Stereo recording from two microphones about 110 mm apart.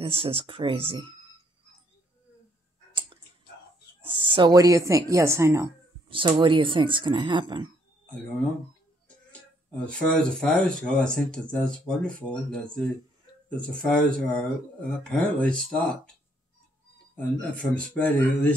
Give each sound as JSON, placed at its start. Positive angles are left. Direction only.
{"t": 0.0, "sound": "speech", "side_deg": -60}
{"t": 2.9, "sound": "clicking", "side_deg": -50}
{"t": 4.3, "sound": "speech", "side_deg": -45}
{"t": 4.6, "sound": "speech", "side_deg": -30}
{"t": 6.0, "sound": "speech", "side_deg": -50}
{"t": 9.8, "sound": "speech", "side_deg": 5}
{"t": 17.1, "sound": "speech", "side_deg": 10}